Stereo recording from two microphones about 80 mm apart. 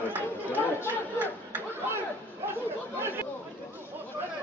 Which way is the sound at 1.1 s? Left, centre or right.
Right.